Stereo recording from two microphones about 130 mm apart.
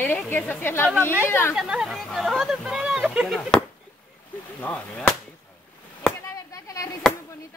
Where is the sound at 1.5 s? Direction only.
5° right (ahead or behind).